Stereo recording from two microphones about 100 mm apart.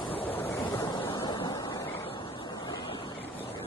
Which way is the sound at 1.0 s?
50° left (ahead or behind).